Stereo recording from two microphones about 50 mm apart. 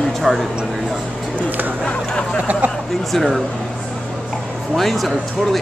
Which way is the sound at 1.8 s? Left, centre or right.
Centre.